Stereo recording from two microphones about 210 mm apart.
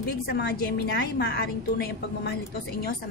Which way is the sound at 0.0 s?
50° left (ahead or behind).